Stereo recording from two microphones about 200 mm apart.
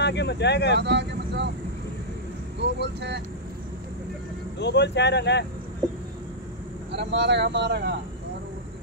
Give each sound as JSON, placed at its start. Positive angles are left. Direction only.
{"t": 0.0, "sound": "speech", "side_deg": 60}
{"t": 0.7, "sound": "speech", "side_deg": -60}
{"t": 2.6, "sound": "speech", "side_deg": -60}
{"t": 4.6, "sound": "speech", "side_deg": 60}
{"t": 6.9, "sound": "speech", "side_deg": -60}